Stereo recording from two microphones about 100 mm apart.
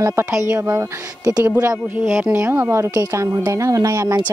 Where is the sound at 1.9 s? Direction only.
20° right (ahead or behind).